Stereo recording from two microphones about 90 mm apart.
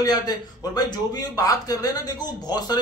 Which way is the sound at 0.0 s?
50° left (ahead or behind).